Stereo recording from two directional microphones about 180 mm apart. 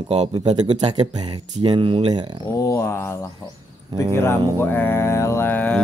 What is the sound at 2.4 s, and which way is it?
Mantra, 15° left (ahead or behind).